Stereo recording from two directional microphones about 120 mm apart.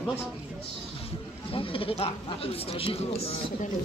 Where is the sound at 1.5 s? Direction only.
50° left (ahead or behind).